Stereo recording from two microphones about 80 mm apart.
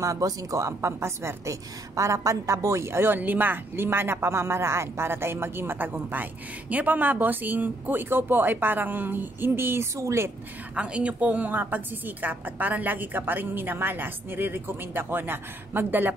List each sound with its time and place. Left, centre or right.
0.0 s a woman's voice: right
10.7 s a woman's voice: centre